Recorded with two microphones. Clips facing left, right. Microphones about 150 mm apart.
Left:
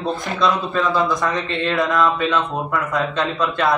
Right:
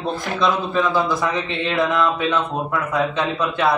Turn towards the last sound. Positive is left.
turn(degrees=0)  # may be behind; listen again after turning